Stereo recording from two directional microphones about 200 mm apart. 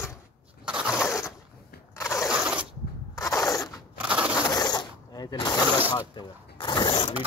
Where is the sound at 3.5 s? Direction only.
15° left (ahead or behind).